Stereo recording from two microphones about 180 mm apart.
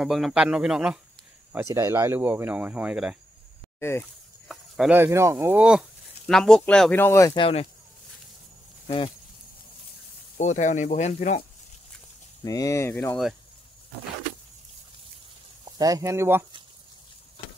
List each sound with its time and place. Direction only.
0.0 s speech: centre (ahead or behind)
1.5 s speech: 15° right (ahead or behind)
4.5 s a sound: centre (ahead or behind)
4.9 s speech: 15° right (ahead or behind); by 7.3 s 15° left (ahead or behind)
7.3 s speech: 30° left (ahead or behind)
8.8 s speech: 30° left (ahead or behind)
10.3 s speech: 40° left (ahead or behind)
12.4 s speech: 20° left (ahead or behind)
15.6 s speech: 20° right (ahead or behind)